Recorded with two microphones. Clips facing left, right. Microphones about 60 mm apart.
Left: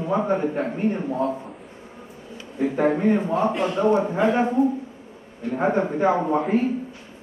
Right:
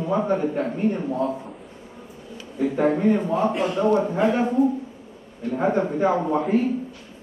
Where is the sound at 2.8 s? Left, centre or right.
Centre.